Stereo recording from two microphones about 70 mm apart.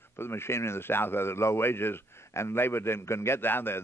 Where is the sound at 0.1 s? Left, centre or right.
Left.